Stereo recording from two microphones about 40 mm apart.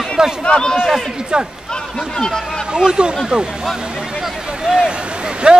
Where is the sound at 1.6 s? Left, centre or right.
Centre.